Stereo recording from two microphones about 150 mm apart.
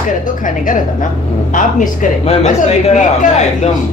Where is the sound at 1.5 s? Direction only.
60° left (ahead or behind).